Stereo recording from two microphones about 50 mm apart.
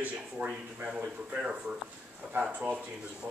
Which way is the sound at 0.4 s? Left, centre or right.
Right.